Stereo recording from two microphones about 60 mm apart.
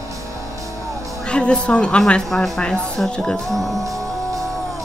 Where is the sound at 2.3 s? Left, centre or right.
Centre.